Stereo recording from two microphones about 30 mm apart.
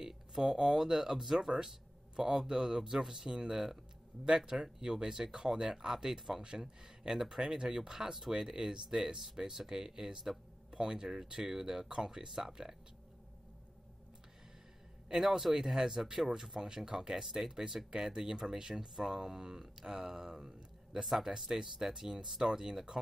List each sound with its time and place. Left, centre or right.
0.4 s speech: right
15.2 s speech: centre
21.0 s speech: centre
21.5 s speech: centre